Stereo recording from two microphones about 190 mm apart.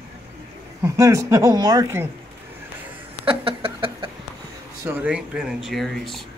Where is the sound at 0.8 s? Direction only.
15° right (ahead or behind).